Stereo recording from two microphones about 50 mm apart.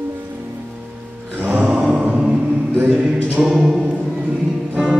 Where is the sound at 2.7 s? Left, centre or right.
Right.